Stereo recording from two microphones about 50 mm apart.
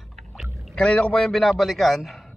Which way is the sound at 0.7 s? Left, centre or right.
Left.